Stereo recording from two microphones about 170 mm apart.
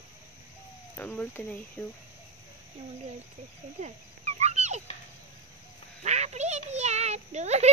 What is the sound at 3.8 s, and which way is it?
Fowl, 40° right (ahead or behind).